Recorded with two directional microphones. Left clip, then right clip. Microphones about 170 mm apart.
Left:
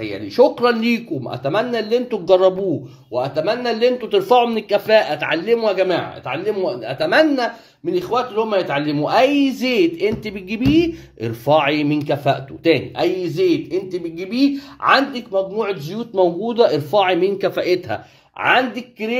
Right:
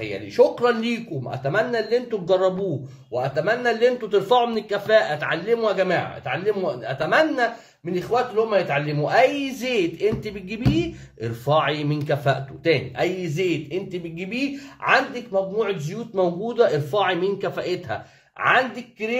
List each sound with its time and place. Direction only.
0.0 s a man's voice: 25° left (ahead or behind)
14.9 s a man's voice: 25° left (ahead or behind)